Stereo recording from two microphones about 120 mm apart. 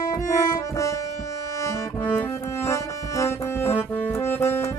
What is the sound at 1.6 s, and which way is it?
Music, 25° left (ahead or behind).